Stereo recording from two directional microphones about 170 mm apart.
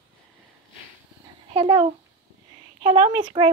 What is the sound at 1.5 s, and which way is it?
A child's voice, 30° right (ahead or behind).